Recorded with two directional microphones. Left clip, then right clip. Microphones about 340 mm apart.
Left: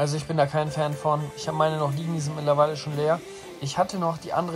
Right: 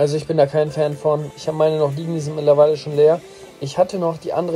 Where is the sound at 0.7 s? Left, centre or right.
Centre.